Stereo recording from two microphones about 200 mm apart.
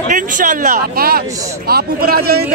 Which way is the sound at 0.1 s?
40° right (ahead or behind).